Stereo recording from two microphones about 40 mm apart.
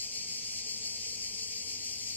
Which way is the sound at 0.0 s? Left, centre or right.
Left.